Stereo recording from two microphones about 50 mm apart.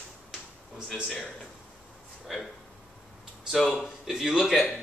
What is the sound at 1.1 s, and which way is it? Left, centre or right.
Speech, centre.